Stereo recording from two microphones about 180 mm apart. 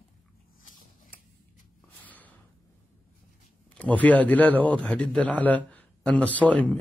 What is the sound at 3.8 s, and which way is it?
A man's voice, 10° left (ahead or behind).